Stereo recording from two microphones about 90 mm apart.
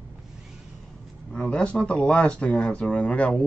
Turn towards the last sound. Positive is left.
turn(degrees=15)  # may be behind; listen again after turning